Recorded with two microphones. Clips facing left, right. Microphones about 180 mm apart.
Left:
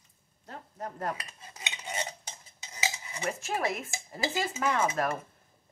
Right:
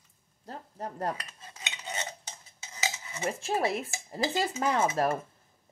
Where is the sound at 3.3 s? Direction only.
30° right (ahead or behind).